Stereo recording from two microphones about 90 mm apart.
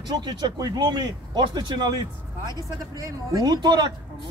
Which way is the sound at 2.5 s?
40° right (ahead or behind).